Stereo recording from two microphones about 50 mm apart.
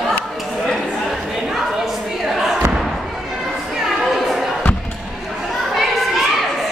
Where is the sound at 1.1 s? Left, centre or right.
Centre.